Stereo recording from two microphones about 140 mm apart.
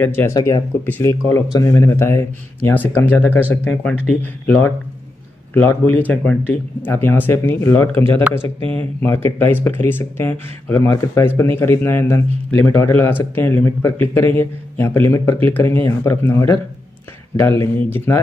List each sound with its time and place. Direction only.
0.0 s speech: 15° left (ahead or behind)
0.4 s speech: 30° left (ahead or behind)
0.8 s speech: 15° left (ahead or behind)